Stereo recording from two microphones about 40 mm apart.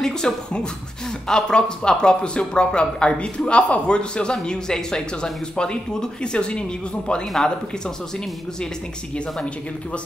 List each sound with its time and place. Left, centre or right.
0.0 s speech: centre